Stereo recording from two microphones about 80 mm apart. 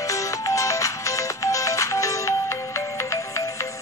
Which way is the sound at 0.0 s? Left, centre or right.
Left.